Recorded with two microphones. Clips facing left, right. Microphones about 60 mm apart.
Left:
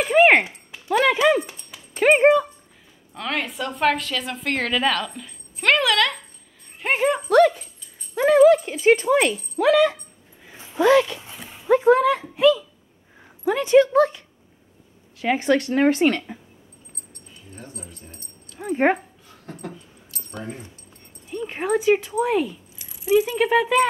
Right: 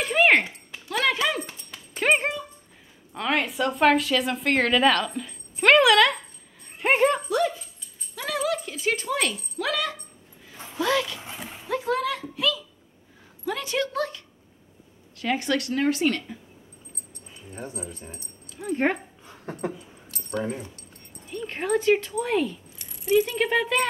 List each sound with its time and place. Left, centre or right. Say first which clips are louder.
0.0 s a sound: left 5 dB; left
1.7 s dog: left 5 dB; centre
3.2 s a woman's voice: right 2 dB; centre
6.8 s dog: even; centre
7.2 s dog: left 9 dB; left
8.1 s a sound: left 14 dB; left
15.1 s speech: left 5 dB; left
18.0 s speech: right 3 dB; centre
18.7 s speech: left 5 dB; centre
19.2 s dog: right 4 dB; right
20.2 s speech: right 5 dB; centre
21.3 s speech: left 3 dB; centre